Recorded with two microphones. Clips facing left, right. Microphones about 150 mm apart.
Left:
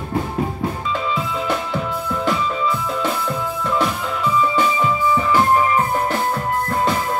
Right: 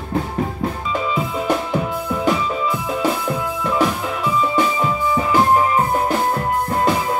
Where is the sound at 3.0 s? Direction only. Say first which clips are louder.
Right 2 dB; 10° right (ahead or behind).